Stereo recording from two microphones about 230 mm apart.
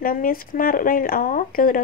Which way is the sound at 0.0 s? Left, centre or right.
Left.